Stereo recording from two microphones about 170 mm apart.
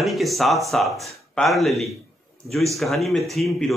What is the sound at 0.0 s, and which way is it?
A man's voice, centre (ahead or behind).